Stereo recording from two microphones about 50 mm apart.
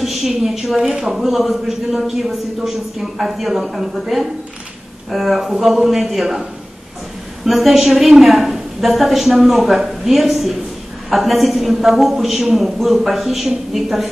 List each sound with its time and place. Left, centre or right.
0.0 s a woman's voice: centre
1.1 s a woman's voice: centre
7.4 s a woman's voice: centre